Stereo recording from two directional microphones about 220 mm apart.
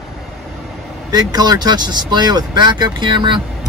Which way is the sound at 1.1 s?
20° right (ahead or behind).